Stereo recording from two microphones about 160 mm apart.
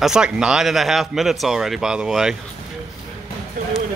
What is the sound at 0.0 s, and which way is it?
Speech, 5° right (ahead or behind).